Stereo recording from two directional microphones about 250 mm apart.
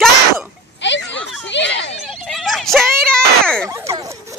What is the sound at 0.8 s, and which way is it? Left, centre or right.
Speech, left.